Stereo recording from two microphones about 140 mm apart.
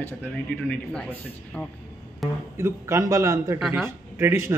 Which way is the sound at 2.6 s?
20° right (ahead or behind).